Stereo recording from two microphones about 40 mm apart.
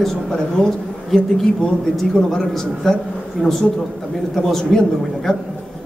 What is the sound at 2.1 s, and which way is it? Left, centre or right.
Speech, centre.